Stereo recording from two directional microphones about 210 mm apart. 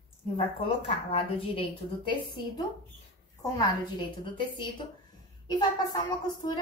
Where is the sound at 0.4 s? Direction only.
25° left (ahead or behind).